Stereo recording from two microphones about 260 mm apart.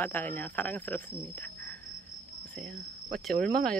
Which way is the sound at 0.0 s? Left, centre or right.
Centre.